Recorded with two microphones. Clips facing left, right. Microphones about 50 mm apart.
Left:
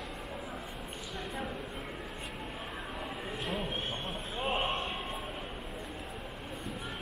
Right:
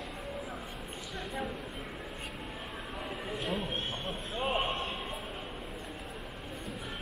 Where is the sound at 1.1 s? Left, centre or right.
Centre.